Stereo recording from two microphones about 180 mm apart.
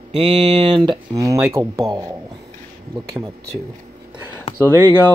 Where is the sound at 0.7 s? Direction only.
25° right (ahead or behind).